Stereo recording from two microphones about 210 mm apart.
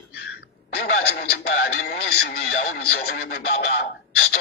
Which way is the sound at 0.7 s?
50° left (ahead or behind).